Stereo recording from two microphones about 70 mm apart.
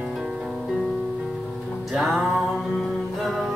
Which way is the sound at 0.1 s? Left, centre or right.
Centre.